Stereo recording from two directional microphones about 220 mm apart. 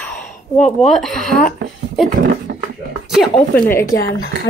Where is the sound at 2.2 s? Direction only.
45° right (ahead or behind).